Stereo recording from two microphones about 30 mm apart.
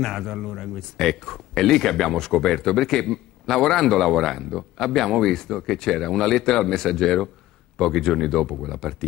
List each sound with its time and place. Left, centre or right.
0.0 s speech: centre